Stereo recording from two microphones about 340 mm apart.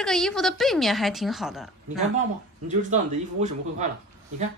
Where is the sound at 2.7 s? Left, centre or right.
Right.